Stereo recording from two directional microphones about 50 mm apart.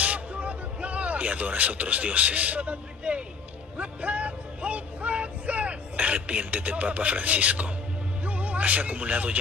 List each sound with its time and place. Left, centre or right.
0.0 s vehicle: right
3.7 s music: right
8.3 s speech: right